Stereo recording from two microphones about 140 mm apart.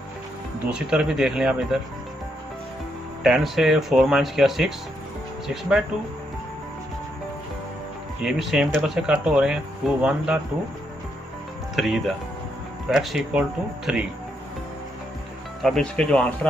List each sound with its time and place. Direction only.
0.7 s speech: 5° right (ahead or behind)
3.3 s speech: centre (ahead or behind)
8.2 s speech: centre (ahead or behind)
11.7 s speech: centre (ahead or behind)
15.6 s speech: 5° left (ahead or behind)